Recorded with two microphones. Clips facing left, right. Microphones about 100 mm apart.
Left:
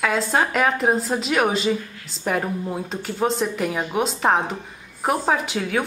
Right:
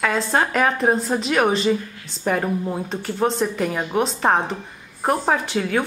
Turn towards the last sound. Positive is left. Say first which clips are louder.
# right 2 dB
turn(degrees=5)  # may be behind; listen again after turning